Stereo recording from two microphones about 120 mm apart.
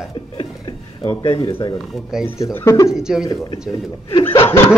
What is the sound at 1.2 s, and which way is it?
Speech, 45° left (ahead or behind).